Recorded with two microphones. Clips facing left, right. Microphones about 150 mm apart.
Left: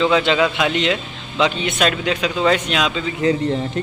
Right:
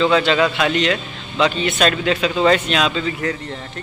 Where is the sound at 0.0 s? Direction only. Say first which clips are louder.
Even; 15° left (ahead or behind).